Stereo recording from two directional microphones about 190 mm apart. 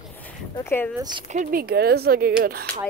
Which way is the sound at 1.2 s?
40° right (ahead or behind).